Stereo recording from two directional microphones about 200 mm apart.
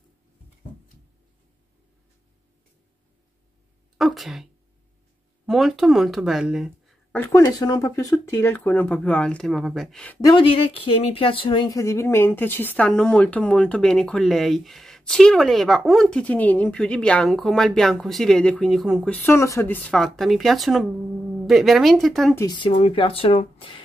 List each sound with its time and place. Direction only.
4.0 s speech: centre (ahead or behind)
5.5 s speech: centre (ahead or behind)
10.2 s speech: 25° left (ahead or behind); by 19.1 s centre (ahead or behind)
19.2 s speech: 15° left (ahead or behind)
22.3 s speech: 15° left (ahead or behind)
22.6 s speech: 25° left (ahead or behind)